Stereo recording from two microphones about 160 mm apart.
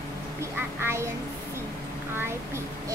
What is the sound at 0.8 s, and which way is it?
Speech, 15° right (ahead or behind).